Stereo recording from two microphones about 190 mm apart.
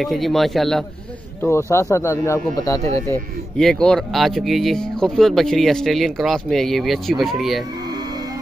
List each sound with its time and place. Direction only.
0.0 s speech: centre (ahead or behind)
1.4 s speech: 15° left (ahead or behind)
3.5 s speech: 5° left (ahead or behind)